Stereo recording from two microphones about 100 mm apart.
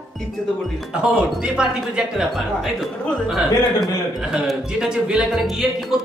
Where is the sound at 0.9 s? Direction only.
5° right (ahead or behind).